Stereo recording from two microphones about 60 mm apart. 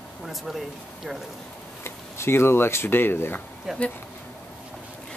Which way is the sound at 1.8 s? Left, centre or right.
Left.